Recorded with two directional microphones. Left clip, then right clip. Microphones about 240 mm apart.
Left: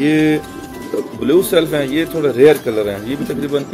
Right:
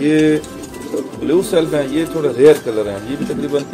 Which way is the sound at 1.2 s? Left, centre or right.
Left.